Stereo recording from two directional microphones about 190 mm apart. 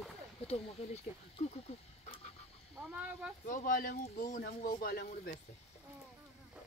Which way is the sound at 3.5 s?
45° left (ahead or behind).